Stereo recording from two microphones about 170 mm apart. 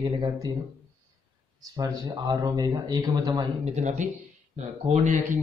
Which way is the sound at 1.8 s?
25° right (ahead or behind).